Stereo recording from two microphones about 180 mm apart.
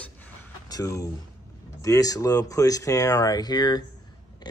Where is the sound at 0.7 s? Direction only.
20° left (ahead or behind).